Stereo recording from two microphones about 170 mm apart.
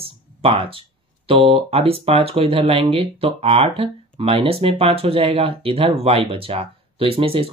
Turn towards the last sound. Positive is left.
turn(degrees=-35)  # may be behind; listen again after turning